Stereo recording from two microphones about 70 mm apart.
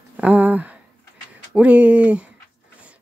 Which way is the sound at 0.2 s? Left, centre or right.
Right.